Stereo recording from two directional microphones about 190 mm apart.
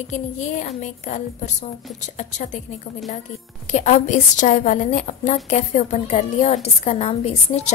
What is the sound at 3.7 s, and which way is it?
A woman's voice, 40° left (ahead or behind).